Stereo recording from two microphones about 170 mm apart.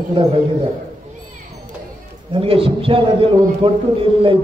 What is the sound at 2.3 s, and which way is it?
A man's voice, 30° right (ahead or behind).